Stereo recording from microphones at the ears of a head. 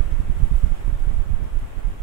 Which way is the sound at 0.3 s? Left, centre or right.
Right.